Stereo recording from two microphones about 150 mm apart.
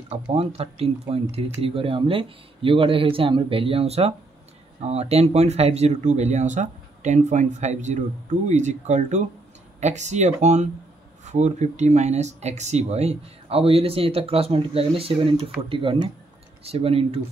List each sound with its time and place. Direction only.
0.1 s speech: 40° right (ahead or behind)